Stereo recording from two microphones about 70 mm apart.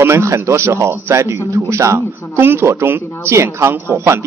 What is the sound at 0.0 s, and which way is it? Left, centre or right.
Speech, right.